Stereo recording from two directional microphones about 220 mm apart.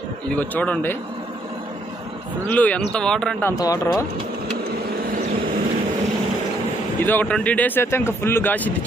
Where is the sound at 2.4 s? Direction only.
5° left (ahead or behind).